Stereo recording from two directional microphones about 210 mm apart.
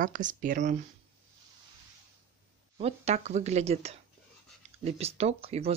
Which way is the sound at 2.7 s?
30° right (ahead or behind).